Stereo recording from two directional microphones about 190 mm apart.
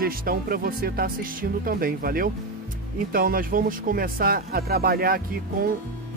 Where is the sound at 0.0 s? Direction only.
50° right (ahead or behind).